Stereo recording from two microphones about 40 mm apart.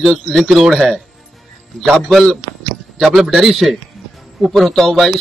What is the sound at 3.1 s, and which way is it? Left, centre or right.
A man's voice, centre.